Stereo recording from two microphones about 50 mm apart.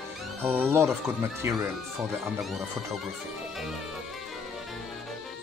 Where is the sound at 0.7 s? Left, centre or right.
Right.